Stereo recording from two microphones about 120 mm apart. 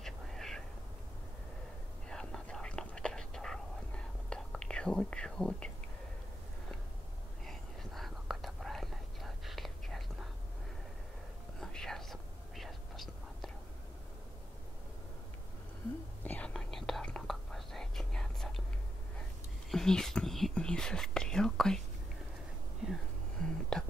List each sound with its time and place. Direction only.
0.0 s whispering: 5° left (ahead or behind)
2.0 s whispering: 5° left (ahead or behind)
7.4 s whispering: centre (ahead or behind)
11.6 s whispering: 5° left (ahead or behind)
16.3 s whispering: 10° left (ahead or behind)
19.7 s whispering: 5° left (ahead or behind)
22.8 s a sound: 5° right (ahead or behind)